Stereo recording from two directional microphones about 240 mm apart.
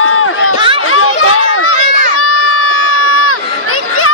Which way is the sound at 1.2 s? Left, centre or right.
Left.